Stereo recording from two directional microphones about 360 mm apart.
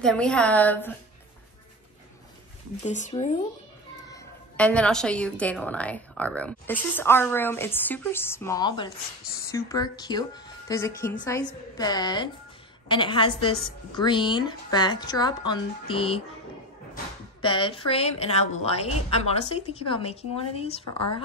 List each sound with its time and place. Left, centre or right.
0.0 s a woman's voice: centre
2.8 s speech: centre
4.1 s a woman's voice: centre